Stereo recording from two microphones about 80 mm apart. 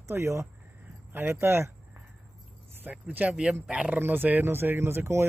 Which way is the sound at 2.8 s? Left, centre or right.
Right.